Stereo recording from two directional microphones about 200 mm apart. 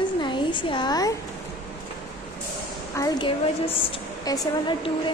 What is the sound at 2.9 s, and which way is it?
A woman's voice, 15° left (ahead or behind).